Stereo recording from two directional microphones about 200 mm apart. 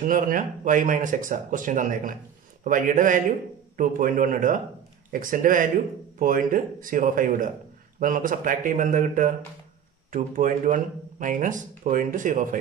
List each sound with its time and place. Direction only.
0.0 s speech: 40° right (ahead or behind)